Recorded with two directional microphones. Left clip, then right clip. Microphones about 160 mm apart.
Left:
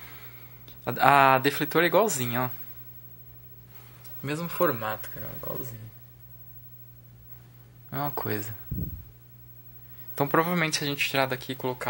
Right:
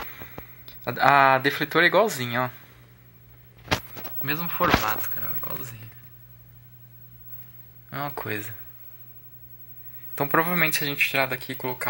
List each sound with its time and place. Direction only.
0.8 s speech: 10° left (ahead or behind)
4.2 s speech: 15° left (ahead or behind)
7.9 s speech: 25° left (ahead or behind)
10.1 s speech: 10° left (ahead or behind)